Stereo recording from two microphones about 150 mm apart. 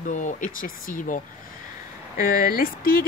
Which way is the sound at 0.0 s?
55° left (ahead or behind).